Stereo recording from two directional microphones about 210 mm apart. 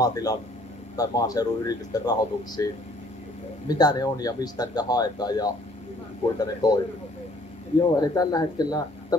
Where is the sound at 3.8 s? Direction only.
20° left (ahead or behind).